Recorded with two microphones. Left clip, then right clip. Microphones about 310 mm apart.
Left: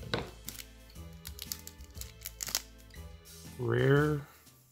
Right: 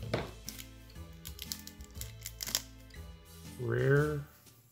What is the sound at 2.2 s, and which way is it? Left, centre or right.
Music, centre.